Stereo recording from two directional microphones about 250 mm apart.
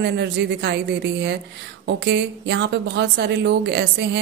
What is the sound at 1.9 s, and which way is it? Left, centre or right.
Speech, right.